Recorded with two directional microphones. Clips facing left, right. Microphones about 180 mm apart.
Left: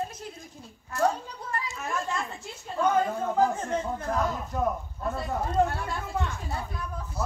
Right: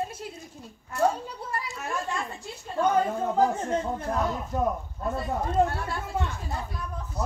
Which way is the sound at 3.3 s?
30° right (ahead or behind).